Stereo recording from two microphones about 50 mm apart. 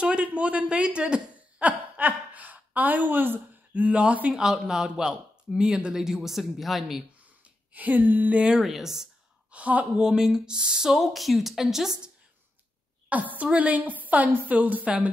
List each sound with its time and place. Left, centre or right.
0.0 s a sound: right
4.4 s speech: centre
7.7 s a woman's voice: right
8.4 s speech: centre
8.6 s speech: centre
9.5 s a woman's voice: right
9.9 s speech: centre
11.0 s speech: centre
13.1 s a woman's voice: right